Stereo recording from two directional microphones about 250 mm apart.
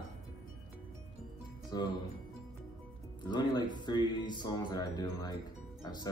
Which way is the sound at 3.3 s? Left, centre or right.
Centre.